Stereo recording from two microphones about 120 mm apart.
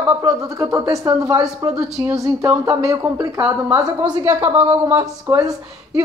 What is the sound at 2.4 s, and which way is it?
Speech, 25° right (ahead or behind).